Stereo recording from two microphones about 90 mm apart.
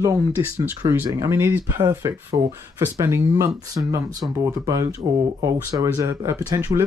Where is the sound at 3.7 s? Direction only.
40° right (ahead or behind).